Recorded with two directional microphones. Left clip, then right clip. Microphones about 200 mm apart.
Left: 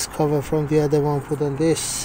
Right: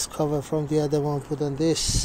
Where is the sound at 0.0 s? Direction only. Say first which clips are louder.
Left 5 dB; 10° right (ahead or behind).